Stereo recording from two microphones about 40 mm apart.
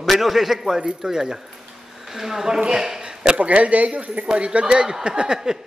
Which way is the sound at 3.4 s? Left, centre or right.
Right.